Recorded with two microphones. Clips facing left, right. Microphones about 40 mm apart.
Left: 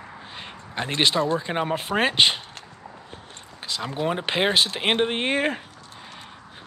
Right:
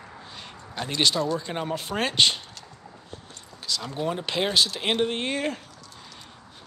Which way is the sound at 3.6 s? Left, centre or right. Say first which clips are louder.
Left 2 dB; left.